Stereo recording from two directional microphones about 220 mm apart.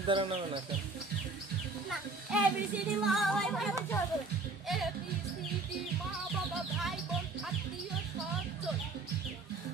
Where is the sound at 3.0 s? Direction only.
Centre (ahead or behind).